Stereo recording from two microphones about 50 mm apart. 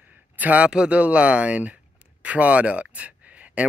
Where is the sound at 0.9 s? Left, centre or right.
Right.